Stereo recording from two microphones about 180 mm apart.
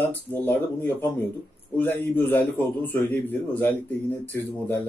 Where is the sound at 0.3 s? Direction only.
10° left (ahead or behind).